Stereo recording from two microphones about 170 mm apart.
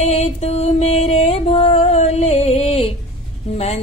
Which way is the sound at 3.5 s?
35° left (ahead or behind).